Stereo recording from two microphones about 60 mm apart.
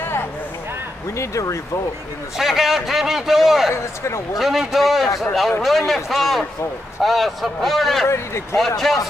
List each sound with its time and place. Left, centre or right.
1.1 s speech: left
2.3 s a man's voice: centre
3.7 s speech: left
4.4 s a man's voice: centre
8.1 s speech: left
8.5 s a man's voice: centre